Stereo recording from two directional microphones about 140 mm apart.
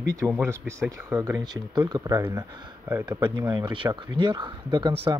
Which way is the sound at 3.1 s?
35° right (ahead or behind).